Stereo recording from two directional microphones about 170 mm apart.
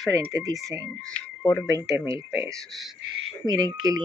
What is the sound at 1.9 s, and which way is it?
Speech, 20° right (ahead or behind).